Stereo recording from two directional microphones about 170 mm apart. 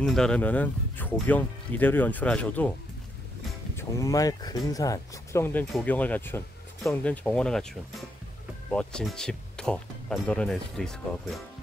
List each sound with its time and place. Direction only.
0.0 s speech: 5° left (ahead or behind)
3.7 s speech: 20° left (ahead or behind); by 11.4 s centre (ahead or behind)